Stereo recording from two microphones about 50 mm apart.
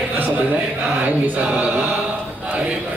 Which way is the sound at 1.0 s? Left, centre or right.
Right.